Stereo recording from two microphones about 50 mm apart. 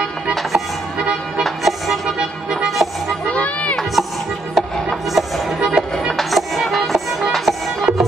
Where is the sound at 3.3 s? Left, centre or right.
Left.